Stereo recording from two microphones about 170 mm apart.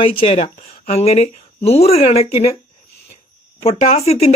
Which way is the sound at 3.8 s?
40° left (ahead or behind).